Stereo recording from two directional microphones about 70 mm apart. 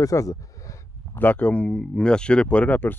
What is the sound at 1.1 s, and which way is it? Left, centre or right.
Speech, left.